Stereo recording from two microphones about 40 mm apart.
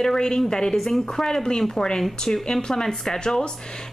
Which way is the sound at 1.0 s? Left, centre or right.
Centre.